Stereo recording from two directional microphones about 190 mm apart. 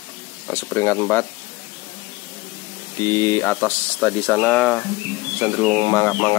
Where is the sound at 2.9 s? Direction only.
15° left (ahead or behind).